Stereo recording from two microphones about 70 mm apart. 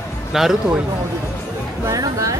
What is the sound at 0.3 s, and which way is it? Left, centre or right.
Speech, centre.